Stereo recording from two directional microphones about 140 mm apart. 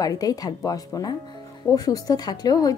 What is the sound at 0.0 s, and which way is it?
Speech, 25° left (ahead or behind).